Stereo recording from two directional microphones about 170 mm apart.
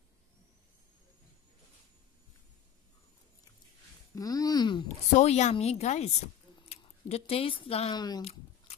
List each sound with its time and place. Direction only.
4.1 s speech: 20° left (ahead or behind)
5.1 s a woman's voice: 40° left (ahead or behind)
8.2 s a sound: 35° left (ahead or behind)